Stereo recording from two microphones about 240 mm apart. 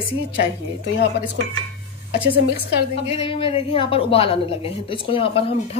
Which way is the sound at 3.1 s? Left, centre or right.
Left.